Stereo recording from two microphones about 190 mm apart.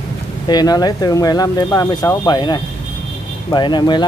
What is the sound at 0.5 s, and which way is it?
Speech, 20° left (ahead or behind).